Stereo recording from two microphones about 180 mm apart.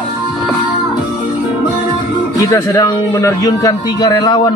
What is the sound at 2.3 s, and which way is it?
Speech, 20° left (ahead or behind).